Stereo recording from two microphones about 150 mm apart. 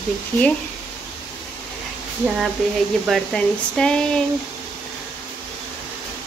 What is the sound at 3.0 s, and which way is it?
Speech, centre (ahead or behind).